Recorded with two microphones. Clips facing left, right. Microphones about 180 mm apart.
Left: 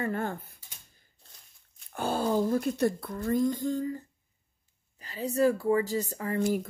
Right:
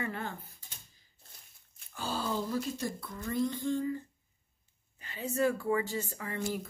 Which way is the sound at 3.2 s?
45° left (ahead or behind).